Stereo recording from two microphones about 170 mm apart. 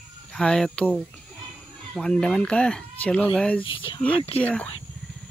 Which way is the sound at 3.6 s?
30° left (ahead or behind).